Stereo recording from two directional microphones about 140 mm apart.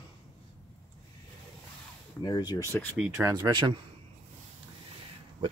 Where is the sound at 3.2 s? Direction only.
25° right (ahead or behind).